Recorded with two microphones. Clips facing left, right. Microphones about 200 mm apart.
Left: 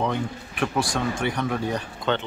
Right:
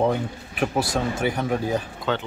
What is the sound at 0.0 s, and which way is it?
Speech, 40° right (ahead or behind).